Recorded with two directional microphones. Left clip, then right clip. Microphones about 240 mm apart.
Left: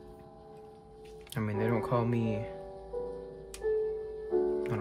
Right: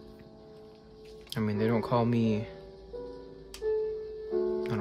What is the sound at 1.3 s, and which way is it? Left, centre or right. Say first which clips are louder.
Speech: right 2 dB; centre.